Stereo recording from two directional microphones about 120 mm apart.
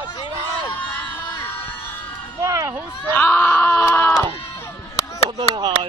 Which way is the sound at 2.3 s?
20° right (ahead or behind).